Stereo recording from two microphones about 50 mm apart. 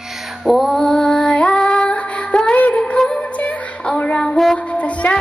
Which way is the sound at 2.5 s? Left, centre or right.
Left.